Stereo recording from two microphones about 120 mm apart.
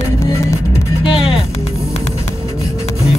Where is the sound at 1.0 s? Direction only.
50° left (ahead or behind).